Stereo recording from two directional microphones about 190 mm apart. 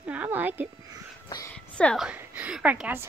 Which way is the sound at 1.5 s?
5° left (ahead or behind).